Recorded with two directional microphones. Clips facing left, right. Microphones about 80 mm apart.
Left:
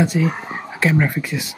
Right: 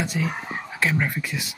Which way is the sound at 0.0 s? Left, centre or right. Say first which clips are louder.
Left 8 dB; left.